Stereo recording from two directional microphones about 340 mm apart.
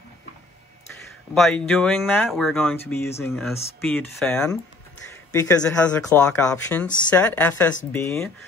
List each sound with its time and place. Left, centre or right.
1.3 s speech: centre